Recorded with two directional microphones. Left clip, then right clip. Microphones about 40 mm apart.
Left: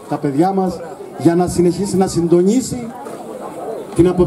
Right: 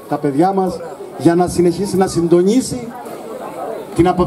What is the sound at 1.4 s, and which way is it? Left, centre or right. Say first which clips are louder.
A man's voice: right 1 dB; right.